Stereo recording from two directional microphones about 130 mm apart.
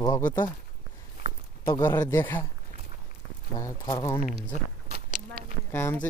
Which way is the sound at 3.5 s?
30° left (ahead or behind).